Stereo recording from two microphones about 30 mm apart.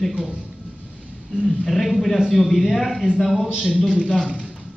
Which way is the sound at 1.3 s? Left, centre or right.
Centre.